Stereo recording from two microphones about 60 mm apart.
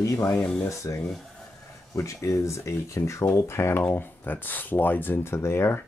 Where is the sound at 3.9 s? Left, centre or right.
Left.